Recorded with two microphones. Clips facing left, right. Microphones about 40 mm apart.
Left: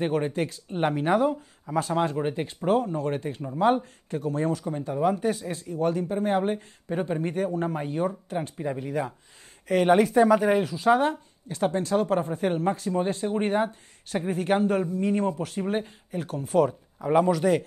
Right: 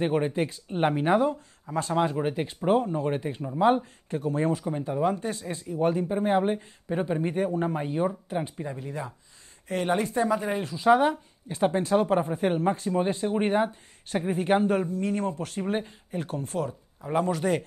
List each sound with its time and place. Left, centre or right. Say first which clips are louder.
0.0 s speech: even; centre
3.4 s speech: even; centre
5.0 s speech: left 5 dB; centre
5.7 s speech: right 1 dB; centre
8.6 s speech: left 6 dB; left
10.6 s speech: right 1 dB; centre
11.4 s speech: right 1 dB; centre
15.0 s speech: left 3 dB; centre